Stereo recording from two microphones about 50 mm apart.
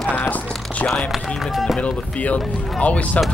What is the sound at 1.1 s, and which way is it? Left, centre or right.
Speech, centre.